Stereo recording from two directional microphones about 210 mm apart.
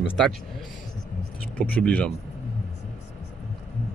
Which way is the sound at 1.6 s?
5° left (ahead or behind).